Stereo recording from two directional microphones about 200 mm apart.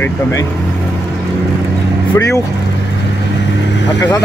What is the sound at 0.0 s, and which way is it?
Speech, 15° left (ahead or behind).